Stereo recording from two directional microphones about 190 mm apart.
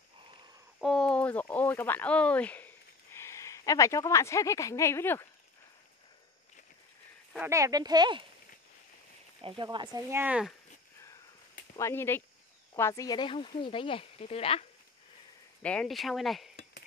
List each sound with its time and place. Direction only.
0.7 s speech: centre (ahead or behind)
7.3 s speech: 15° right (ahead or behind)
9.4 s speech: 25° right (ahead or behind); by 10.5 s 5° right (ahead or behind)
11.7 s speech: 15° left (ahead or behind); by 14.7 s 30° left (ahead or behind)
15.6 s speech: 5° left (ahead or behind)